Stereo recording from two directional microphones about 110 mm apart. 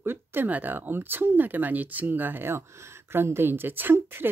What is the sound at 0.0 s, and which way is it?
Speech, 20° right (ahead or behind).